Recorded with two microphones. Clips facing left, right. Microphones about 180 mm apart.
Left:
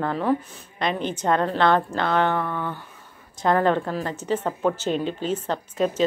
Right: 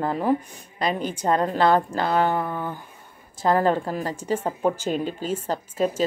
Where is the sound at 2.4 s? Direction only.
35° right (ahead or behind).